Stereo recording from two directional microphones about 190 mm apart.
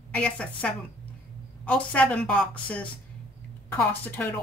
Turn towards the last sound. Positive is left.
turn(degrees=10)  # may be behind; listen again after turning